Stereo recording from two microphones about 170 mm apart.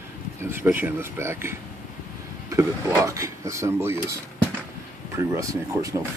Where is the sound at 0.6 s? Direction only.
10° right (ahead or behind).